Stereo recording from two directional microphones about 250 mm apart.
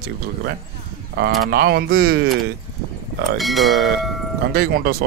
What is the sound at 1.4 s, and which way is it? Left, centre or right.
Speech, right.